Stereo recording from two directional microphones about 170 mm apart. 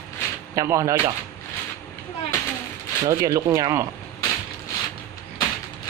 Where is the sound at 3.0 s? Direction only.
20° right (ahead or behind).